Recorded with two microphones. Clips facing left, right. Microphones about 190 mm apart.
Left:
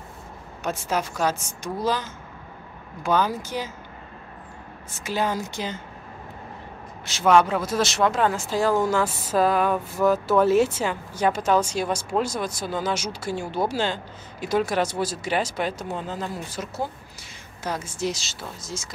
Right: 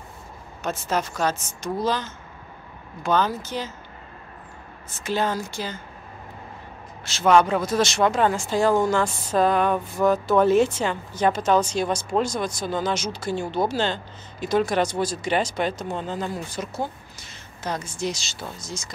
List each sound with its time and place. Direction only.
0.7 s speech: 10° left (ahead or behind)
5.0 s speech: 10° left (ahead or behind)
7.2 s speech: 5° left (ahead or behind)